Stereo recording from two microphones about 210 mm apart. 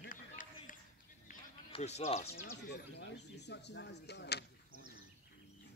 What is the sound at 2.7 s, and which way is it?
Speech, 55° left (ahead or behind).